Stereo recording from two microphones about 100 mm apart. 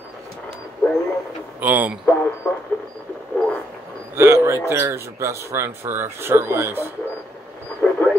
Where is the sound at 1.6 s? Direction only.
15° right (ahead or behind).